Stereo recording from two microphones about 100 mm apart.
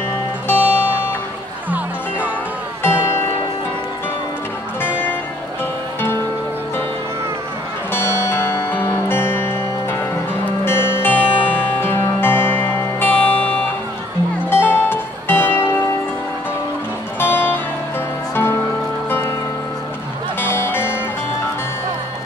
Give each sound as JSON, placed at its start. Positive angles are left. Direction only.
{"t": 0.5, "sound": "music", "side_deg": 20}
{"t": 1.7, "sound": "music", "side_deg": -15}
{"t": 2.8, "sound": "music", "side_deg": 20}
{"t": 4.8, "sound": "music", "side_deg": 20}
{"t": 7.9, "sound": "music", "side_deg": 25}
{"t": 17.2, "sound": "music", "side_deg": 20}
{"t": 20.3, "sound": "music", "side_deg": 25}